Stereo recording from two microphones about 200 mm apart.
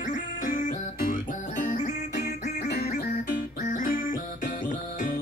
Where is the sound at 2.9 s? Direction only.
40° left (ahead or behind).